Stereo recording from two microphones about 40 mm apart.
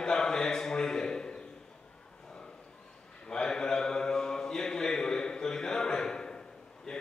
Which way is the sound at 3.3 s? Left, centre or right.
Centre.